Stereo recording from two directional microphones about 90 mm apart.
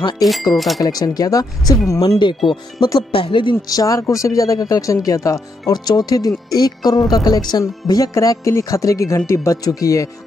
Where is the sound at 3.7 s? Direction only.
40° left (ahead or behind).